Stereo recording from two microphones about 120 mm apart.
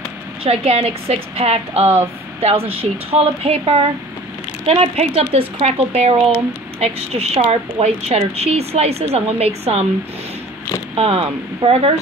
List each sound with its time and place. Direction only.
0.4 s speech: 60° right (ahead or behind)
11.0 s speech: 55° right (ahead or behind)